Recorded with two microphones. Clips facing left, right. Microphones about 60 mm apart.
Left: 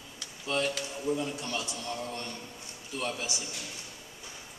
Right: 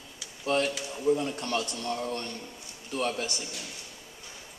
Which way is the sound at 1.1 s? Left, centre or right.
Right.